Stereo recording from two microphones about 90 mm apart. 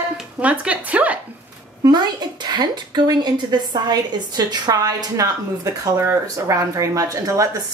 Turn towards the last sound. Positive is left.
turn(degrees=-40)  # may be behind; listen again after turning